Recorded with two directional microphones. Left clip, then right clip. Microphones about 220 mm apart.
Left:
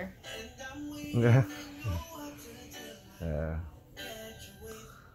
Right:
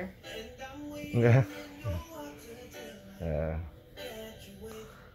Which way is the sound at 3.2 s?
5° left (ahead or behind).